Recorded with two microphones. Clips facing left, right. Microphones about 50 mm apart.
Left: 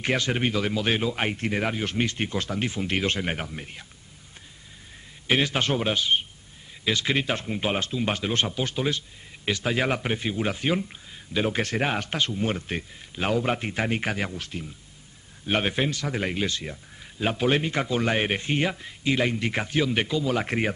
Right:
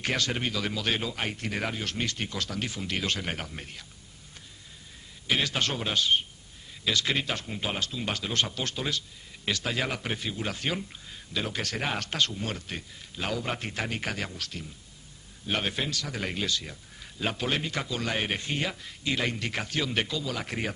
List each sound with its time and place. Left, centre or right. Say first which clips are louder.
0.0 s speech: left 4 dB; centre
1.1 s speech: left 5 dB; left
1.5 s speech: left 5 dB; centre
5.2 s speech: left 4 dB; left
8.5 s speech: left 5 dB; centre
11.9 s speech: left 2 dB; centre
17.0 s a sound: left 5 dB; centre
17.5 s speech: left 6 dB; left
19.0 s speech: left 5 dB; centre
20.2 s speech: left 7 dB; left